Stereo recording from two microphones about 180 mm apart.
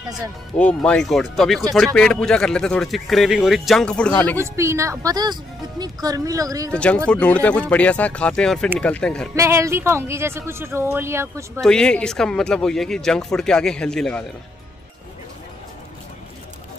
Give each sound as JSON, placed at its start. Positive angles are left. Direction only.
{"t": 0.6, "sound": "speech", "side_deg": 5}
{"t": 4.4, "sound": "a woman's voice", "side_deg": -15}
{"t": 6.7, "sound": "speech", "side_deg": 5}
{"t": 9.3, "sound": "speech", "side_deg": -15}
{"t": 11.6, "sound": "speech", "side_deg": 5}